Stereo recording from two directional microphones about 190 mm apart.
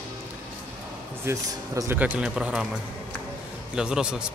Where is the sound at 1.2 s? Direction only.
15° right (ahead or behind).